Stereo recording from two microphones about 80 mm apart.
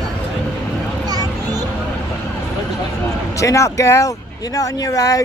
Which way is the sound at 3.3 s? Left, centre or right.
Left.